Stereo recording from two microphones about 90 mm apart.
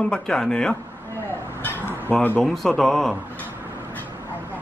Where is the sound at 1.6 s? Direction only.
20° left (ahead or behind).